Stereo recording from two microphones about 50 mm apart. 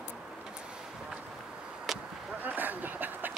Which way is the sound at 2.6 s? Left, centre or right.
Right.